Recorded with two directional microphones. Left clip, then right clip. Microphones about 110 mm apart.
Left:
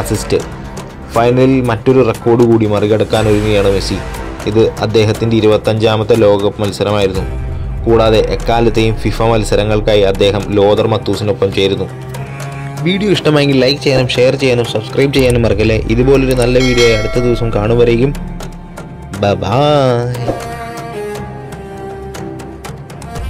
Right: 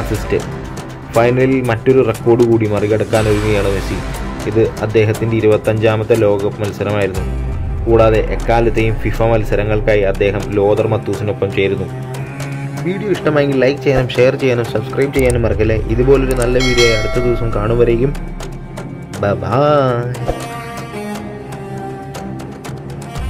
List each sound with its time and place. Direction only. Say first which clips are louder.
0.3 s a man's voice: left 2 dB; 30° left (ahead or behind)
4.5 s speech: left 3 dB; 30° left (ahead or behind)
12.8 s speech: left 4 dB; 60° left (ahead or behind); by 14.8 s 20° left (ahead or behind)
15.0 s speech: left 3 dB; 60° left (ahead or behind)
15.3 s speech: left 3 dB; 40° left (ahead or behind)
16.5 s speech: left 2 dB; centre (ahead or behind)
17.3 s a man's voice: left 3 dB; 30° left (ahead or behind)
19.2 s speech: left 2 dB; 35° left (ahead or behind)